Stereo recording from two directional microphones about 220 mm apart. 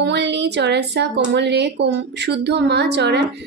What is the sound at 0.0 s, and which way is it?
A woman's voice, 50° right (ahead or behind).